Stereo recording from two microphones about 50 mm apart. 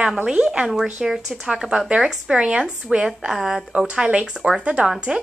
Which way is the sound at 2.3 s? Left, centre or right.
Right.